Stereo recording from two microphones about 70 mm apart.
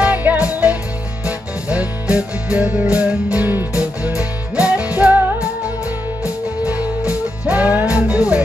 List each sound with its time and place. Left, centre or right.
0.0 s music: right
6.6 s music: centre